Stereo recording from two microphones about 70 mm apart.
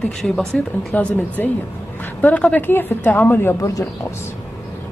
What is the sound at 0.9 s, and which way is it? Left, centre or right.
A woman's voice, left.